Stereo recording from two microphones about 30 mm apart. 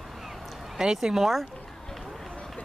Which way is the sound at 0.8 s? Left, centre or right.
Right.